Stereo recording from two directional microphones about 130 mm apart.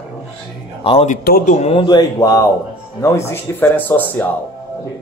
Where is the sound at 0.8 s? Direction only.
50° left (ahead or behind).